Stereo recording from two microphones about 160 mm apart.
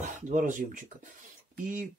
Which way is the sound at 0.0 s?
55° right (ahead or behind).